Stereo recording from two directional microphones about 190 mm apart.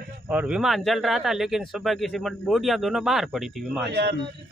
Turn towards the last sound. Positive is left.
turn(degrees=-60)  # may be behind; listen again after turning